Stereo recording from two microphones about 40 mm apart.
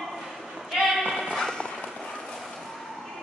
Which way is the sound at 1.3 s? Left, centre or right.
Centre.